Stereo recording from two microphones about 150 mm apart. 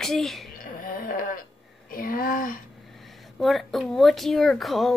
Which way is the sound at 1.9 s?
70° left (ahead or behind).